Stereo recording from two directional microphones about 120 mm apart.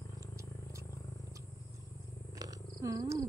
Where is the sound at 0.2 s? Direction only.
25° right (ahead or behind).